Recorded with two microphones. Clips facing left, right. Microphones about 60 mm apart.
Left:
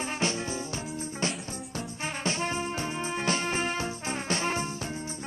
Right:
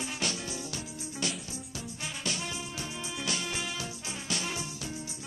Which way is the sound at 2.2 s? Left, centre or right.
Left.